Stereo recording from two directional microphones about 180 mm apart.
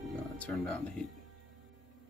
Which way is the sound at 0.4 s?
5° left (ahead or behind).